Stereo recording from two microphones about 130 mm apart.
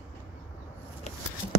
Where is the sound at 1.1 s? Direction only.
55° left (ahead or behind).